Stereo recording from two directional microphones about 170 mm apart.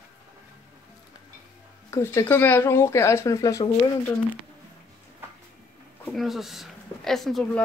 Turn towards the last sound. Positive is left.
turn(degrees=0)  # may be behind; listen again after turning